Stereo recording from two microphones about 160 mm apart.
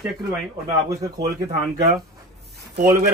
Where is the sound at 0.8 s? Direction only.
20° right (ahead or behind).